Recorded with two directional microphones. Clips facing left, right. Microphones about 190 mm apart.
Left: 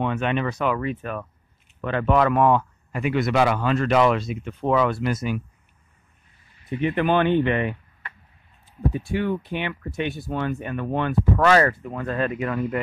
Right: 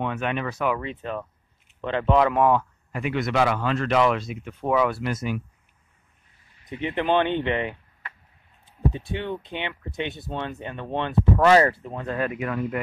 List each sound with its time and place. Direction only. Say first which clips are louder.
0.0 s speech: left 3 dB; 5° right (ahead or behind)
0.7 s speech: left 3 dB; 20° right (ahead or behind)
2.9 s speech: left 3 dB; 5° left (ahead or behind); by 5.0 s 10° right (ahead or behind)
6.6 s speech: left 4 dB; 20° right (ahead or behind)
8.9 s speech: left 5 dB; 25° right (ahead or behind)